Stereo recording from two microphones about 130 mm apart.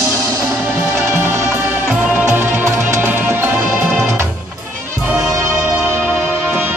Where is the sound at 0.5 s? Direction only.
10° right (ahead or behind).